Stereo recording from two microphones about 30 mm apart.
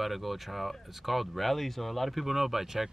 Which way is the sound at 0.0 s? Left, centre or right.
Centre.